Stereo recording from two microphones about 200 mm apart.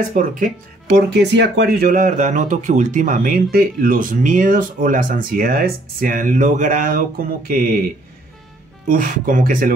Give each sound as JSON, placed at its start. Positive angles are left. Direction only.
{"t": 0.1, "sound": "speech", "side_deg": -45}
{"t": 0.9, "sound": "speech", "side_deg": -60}
{"t": 8.8, "sound": "speech", "side_deg": -45}